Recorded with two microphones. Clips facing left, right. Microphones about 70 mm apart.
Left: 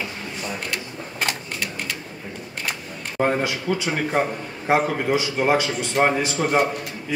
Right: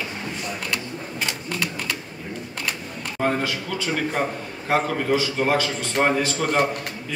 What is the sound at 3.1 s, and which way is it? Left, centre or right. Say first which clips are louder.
A man's voice: left 2 dB; centre.